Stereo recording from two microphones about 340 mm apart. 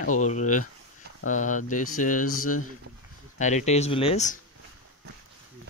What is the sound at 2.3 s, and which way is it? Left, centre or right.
Speech, left.